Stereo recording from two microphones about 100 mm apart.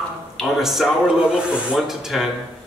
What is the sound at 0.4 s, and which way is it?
A man's voice, centre (ahead or behind).